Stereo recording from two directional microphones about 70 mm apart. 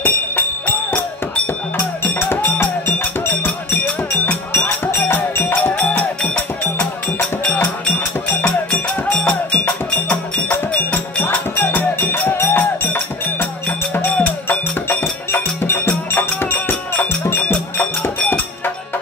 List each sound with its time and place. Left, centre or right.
0.0 s music: left
2.1 s music: left
5.0 s music: left
5.6 s music: centre
8.7 s music: centre
10.0 s music: left
15.6 s music: left